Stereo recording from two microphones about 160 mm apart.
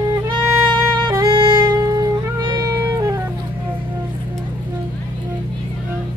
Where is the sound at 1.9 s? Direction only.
25° right (ahead or behind).